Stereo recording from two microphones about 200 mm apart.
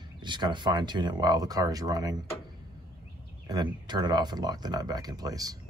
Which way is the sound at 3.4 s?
20° right (ahead or behind).